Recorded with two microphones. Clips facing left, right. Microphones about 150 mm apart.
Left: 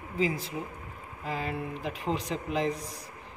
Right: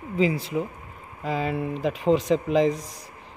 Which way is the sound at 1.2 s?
90° right.